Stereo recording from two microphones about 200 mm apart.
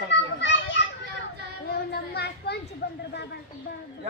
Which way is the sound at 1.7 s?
55° left (ahead or behind).